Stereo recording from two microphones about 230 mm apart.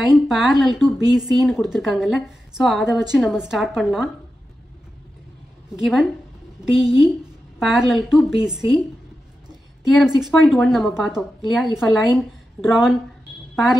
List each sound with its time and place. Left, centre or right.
0.0 s speech: centre
5.8 s a woman's voice: centre
9.9 s speech: centre